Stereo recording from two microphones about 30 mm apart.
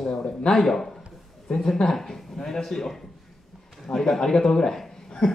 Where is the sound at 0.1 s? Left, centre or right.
Left.